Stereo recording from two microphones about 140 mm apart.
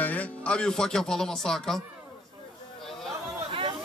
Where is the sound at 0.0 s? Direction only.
10° left (ahead or behind).